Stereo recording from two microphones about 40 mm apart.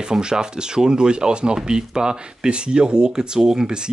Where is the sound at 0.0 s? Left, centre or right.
Centre.